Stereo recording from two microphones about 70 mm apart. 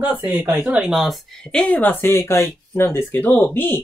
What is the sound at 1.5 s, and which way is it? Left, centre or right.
Speech, centre.